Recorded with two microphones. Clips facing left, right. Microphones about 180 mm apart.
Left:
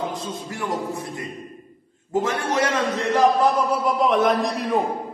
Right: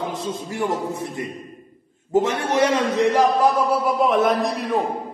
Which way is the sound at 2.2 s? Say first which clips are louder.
Right 3 dB; 20° right (ahead or behind).